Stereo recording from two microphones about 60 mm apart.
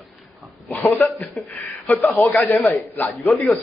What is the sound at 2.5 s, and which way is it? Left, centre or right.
Speech, left.